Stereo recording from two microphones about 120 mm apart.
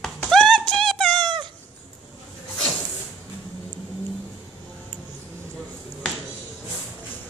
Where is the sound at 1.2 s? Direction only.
40° right (ahead or behind).